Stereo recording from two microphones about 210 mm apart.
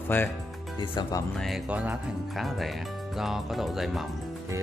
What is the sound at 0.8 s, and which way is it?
Speech, 20° left (ahead or behind).